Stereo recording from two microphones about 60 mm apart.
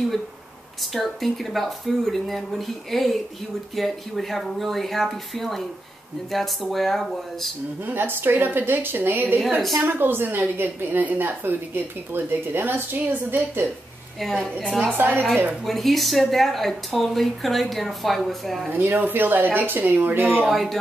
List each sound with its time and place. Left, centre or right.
0.9 s speech: centre
7.8 s a woman's voice: right
14.3 s a woman's voice: centre
15.0 s a woman's voice: right
15.6 s speech: centre
18.7 s a woman's voice: right
20.4 s speech: centre